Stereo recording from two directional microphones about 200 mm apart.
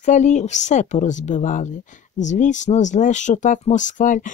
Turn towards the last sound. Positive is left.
turn(degrees=40)  # may be behind; listen again after turning